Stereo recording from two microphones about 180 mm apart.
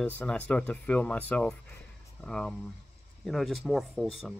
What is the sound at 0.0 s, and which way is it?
Speech, 10° left (ahead or behind).